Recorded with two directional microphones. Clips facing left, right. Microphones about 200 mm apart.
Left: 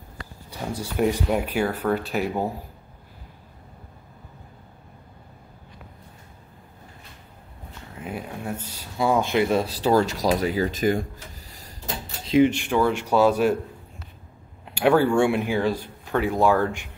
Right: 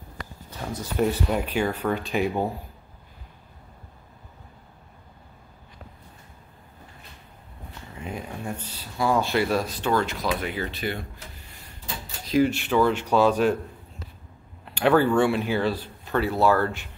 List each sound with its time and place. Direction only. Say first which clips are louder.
0.5 s speech: left 2 dB; 10° left (ahead or behind)
7.9 s a sound: left 1 dB; 5° left (ahead or behind)
8.9 s speech: left 2 dB; 20° left (ahead or behind)
9.8 s speech: left 6 dB; 40° left (ahead or behind)
12.3 s speech: left 3 dB; 20° left (ahead or behind)
14.6 s speech: left 1 dB; 10° left (ahead or behind)